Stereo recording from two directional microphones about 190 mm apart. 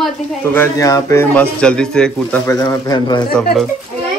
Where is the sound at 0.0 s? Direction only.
10° left (ahead or behind).